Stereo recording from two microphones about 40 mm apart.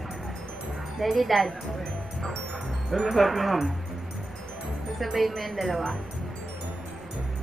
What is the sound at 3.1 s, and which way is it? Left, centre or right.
Speech, centre.